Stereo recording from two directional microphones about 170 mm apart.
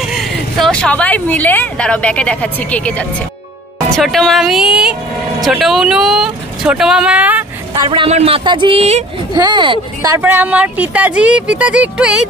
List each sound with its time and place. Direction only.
0.1 s speech: centre (ahead or behind)
7.7 s speech: 25° right (ahead or behind)
9.3 s speech: 25° right (ahead or behind)
10.1 s speech: 10° right (ahead or behind)